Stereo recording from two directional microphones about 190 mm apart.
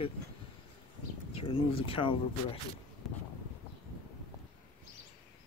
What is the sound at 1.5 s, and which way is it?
Speech, 30° left (ahead or behind).